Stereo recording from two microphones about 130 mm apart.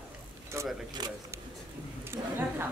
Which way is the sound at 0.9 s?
30° right (ahead or behind).